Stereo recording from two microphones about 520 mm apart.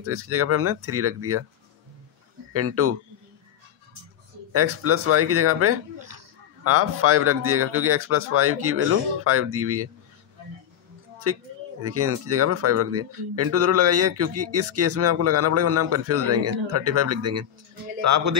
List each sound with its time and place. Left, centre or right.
0.0 s speech: right
2.5 s speech: right
4.5 s speech: right
5.9 s a sound: right
6.6 s speech: right
11.3 s speech: right